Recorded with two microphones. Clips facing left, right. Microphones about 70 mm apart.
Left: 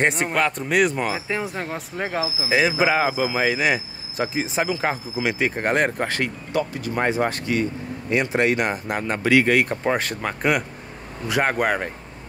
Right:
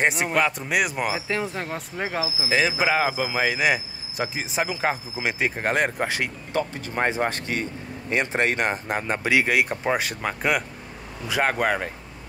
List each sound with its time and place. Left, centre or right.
0.0 s speech: centre
1.3 s speech: centre
5.1 s speech: right
5.6 s speech: centre
6.0 s speech: centre
6.5 s speech: right; by 11.9 s centre